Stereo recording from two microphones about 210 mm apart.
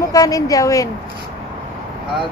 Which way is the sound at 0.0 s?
15° left (ahead or behind).